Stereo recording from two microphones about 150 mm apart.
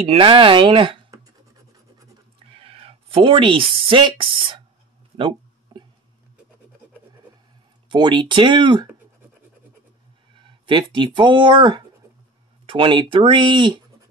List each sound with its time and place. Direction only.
0.0 s speech: 35° right (ahead or behind)
2.3 s a sound: 40° right (ahead or behind)
3.7 s speech: 35° right (ahead or behind)
5.1 s a sound: 30° right (ahead or behind)
7.9 s speech: 30° right (ahead or behind)
10.3 s speech: 30° right (ahead or behind)